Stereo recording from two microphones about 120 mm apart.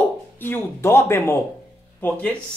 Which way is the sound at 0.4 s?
15° left (ahead or behind).